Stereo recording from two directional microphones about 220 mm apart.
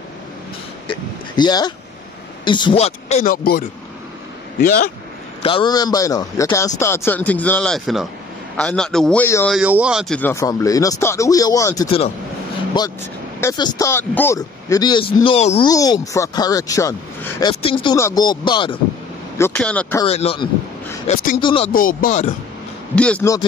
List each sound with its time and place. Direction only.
0.8 s speech: 20° left (ahead or behind); by 4.8 s 45° left (ahead or behind)
5.4 s a man's voice: 25° left (ahead or behind)
9.6 s a man's voice: 5° right (ahead or behind); by 15.7 s 30° left (ahead or behind)
15.7 s a man's voice: 15° left (ahead or behind)
19.3 s a man's voice: 10° left (ahead or behind)
20.1 s speech: 25° left (ahead or behind)
21.4 s speech: 25° left (ahead or behind)
21.7 s speech: 40° left (ahead or behind)
22.9 s a man's voice: 5° left (ahead or behind)